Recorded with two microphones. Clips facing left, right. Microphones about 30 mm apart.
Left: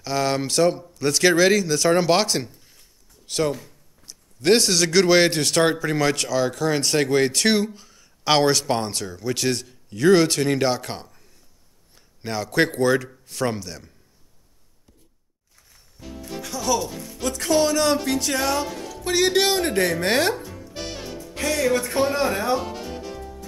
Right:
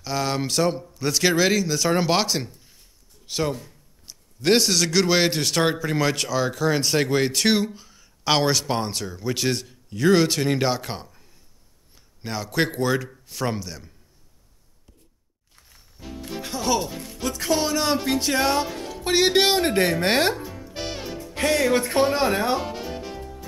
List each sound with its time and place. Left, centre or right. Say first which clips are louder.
0.0 s a man's voice: left 2 dB; centre
15.7 s music: even; centre
16.3 s speech: even; right
17.2 s speech: left 3 dB; centre
19.3 s music: right 1 dB; right
21.4 s a man's voice: right 1 dB; right
22.6 s music: right 1 dB; centre